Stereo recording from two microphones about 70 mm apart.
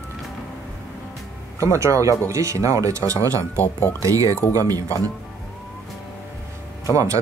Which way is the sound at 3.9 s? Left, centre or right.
Right.